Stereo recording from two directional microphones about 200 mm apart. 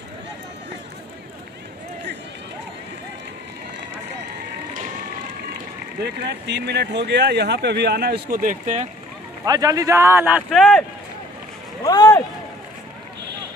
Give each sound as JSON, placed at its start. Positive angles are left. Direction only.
{"t": 6.2, "sound": "speech", "side_deg": -60}
{"t": 9.4, "sound": "speech", "side_deg": -20}
{"t": 11.8, "sound": "speech", "side_deg": 20}